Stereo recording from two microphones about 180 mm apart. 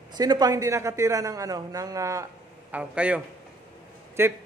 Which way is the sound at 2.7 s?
5° right (ahead or behind).